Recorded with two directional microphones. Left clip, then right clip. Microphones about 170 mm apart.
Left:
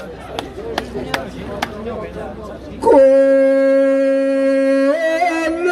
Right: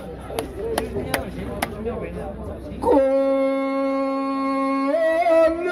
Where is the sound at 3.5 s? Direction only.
55° left (ahead or behind).